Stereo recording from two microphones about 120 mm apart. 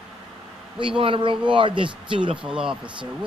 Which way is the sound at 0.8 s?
45° right (ahead or behind).